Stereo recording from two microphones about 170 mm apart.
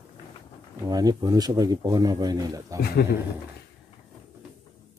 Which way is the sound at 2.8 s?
70° left (ahead or behind).